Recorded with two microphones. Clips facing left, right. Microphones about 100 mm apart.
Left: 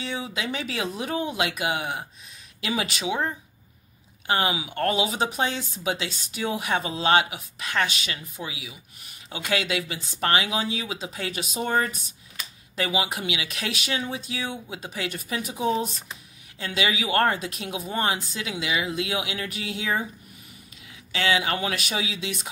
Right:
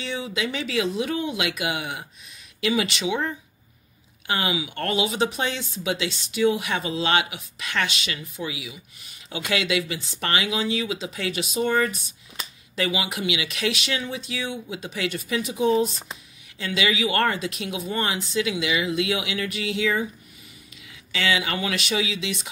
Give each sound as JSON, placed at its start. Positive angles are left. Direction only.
{"t": 0.0, "sound": "speech", "side_deg": 40}
{"t": 21.1, "sound": "speech", "side_deg": 35}